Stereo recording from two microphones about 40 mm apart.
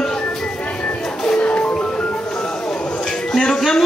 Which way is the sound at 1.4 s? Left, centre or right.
Left.